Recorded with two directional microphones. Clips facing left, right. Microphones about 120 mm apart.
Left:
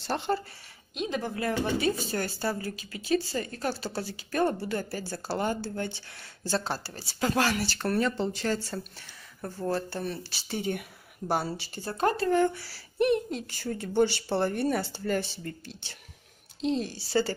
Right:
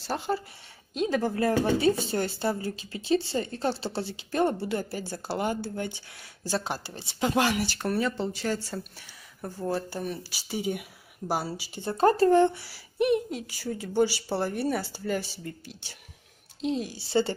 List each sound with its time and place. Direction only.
0.0 s speech: 5° right (ahead or behind)
0.9 s a woman's voice: 40° right (ahead or behind); by 11.8 s 10° right (ahead or behind)
11.8 s speech: 25° right (ahead or behind)
12.5 s a woman's voice: 15° right (ahead or behind)